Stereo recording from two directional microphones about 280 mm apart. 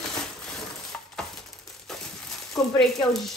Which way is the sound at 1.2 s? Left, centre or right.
Centre.